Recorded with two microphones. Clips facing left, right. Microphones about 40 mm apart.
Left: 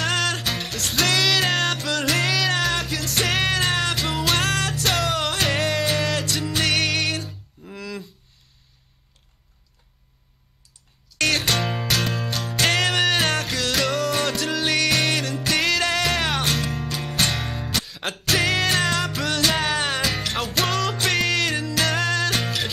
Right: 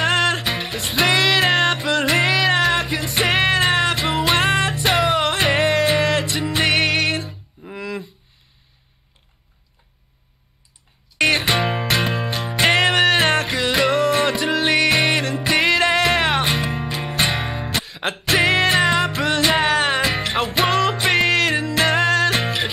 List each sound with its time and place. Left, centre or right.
0.0 s music: centre
11.1 s music: right